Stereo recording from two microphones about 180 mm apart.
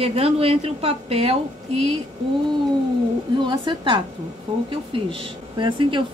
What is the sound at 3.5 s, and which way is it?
Speech, 25° right (ahead or behind).